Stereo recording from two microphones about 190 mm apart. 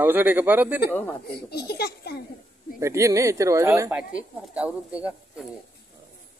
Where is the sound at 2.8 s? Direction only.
15° right (ahead or behind).